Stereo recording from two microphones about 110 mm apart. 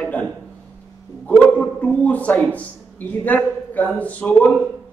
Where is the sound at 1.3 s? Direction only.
15° left (ahead or behind).